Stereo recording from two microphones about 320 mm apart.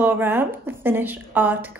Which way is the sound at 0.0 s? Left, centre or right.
Centre.